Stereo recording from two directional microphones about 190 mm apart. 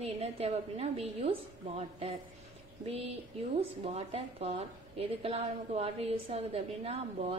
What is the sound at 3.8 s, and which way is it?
A woman's voice, 30° right (ahead or behind).